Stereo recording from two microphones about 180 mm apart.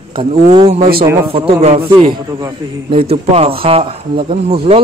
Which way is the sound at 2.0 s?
25° right (ahead or behind).